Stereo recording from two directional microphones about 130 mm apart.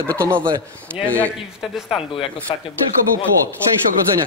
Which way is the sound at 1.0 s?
10° left (ahead or behind).